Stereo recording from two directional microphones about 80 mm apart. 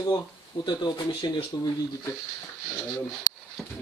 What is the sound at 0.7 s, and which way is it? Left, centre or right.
Speech, left.